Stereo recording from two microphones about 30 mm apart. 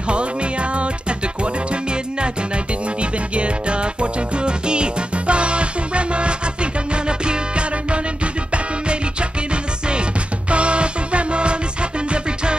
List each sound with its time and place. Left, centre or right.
0.1 s music: right